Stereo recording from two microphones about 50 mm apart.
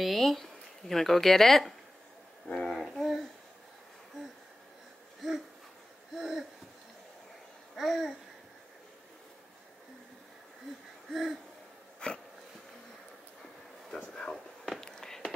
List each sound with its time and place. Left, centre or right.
0.0 s speech: centre
2.9 s speech: centre
6.1 s speech: centre
7.7 s babbling: centre
11.1 s hoot: centre
12.0 s dog: centre
13.9 s a sound: centre
14.3 s whispering: centre